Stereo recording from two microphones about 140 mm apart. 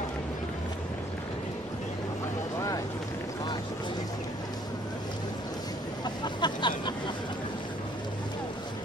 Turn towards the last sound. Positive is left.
turn(degrees=35)  # may be behind; listen again after turning